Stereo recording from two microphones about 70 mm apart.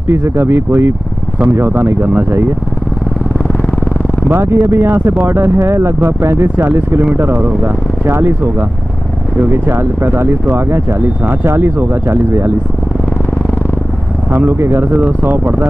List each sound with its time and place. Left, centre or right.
0.1 s speech: right
4.3 s speech: right
14.3 s speech: right
15.0 s speech: right